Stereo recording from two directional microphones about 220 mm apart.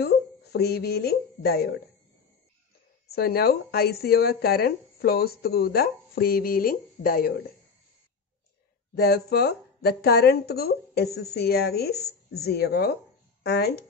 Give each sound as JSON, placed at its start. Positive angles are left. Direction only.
{"t": 0.0, "sound": "speech", "side_deg": 45}
{"t": 3.1, "sound": "speech", "side_deg": 45}
{"t": 8.9, "sound": "speech", "side_deg": 45}